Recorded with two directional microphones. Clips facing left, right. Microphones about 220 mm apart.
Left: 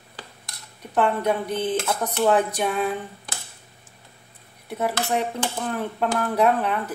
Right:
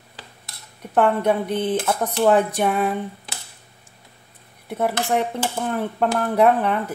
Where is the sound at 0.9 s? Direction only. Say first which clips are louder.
Right 3 dB; 55° right (ahead or behind).